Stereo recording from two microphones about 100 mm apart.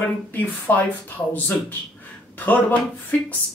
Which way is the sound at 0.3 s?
20° left (ahead or behind).